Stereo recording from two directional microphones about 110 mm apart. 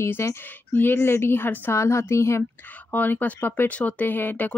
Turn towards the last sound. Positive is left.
turn(degrees=15)  # may be behind; listen again after turning